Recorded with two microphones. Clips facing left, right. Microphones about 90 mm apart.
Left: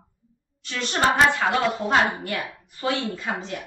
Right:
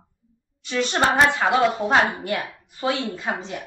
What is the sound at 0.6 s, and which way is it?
A woman's voice, 15° right (ahead or behind).